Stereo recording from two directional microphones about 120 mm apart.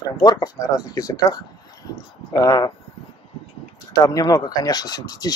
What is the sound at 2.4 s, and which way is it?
Speech, 30° left (ahead or behind).